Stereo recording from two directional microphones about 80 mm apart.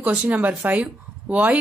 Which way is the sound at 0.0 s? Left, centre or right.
Centre.